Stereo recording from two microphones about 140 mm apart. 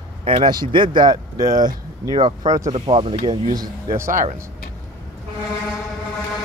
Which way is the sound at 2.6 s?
45° right (ahead or behind).